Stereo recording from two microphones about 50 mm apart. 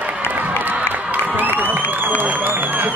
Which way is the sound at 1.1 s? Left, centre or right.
Right.